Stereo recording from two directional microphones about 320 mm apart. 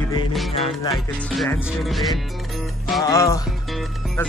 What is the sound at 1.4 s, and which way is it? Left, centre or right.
Speech, centre.